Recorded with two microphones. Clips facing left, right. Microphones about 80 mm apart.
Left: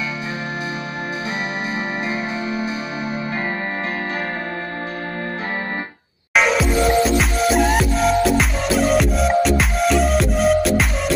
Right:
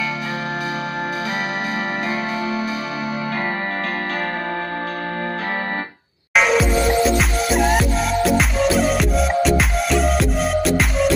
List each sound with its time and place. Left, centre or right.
6.3 s music: centre